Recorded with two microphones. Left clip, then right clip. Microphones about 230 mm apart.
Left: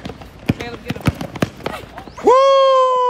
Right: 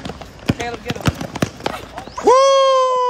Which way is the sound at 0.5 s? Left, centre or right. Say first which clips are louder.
Right 3 dB; right.